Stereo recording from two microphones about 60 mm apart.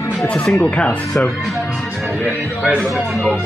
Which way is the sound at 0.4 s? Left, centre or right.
Centre.